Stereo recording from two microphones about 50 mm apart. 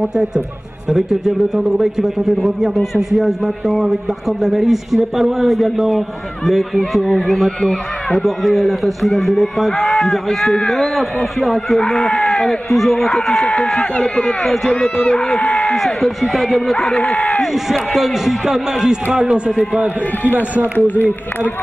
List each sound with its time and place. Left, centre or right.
0.0 s a man's voice: centre
9.8 s run: centre
10.0 s a man's voice: centre
12.1 s a man's voice: centre
20.7 s speech: left